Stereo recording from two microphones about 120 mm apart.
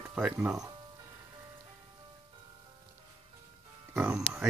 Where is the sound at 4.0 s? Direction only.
5° right (ahead or behind).